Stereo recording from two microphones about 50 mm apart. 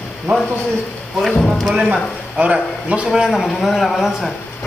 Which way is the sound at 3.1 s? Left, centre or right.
Centre.